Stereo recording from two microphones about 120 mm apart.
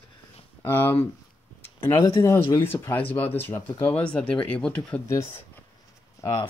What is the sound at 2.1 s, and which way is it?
Speech, 20° left (ahead or behind).